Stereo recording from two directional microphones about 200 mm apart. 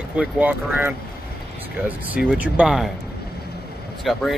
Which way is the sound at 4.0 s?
Centre (ahead or behind).